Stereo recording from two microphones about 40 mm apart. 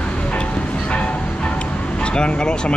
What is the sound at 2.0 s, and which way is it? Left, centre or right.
Speech, left.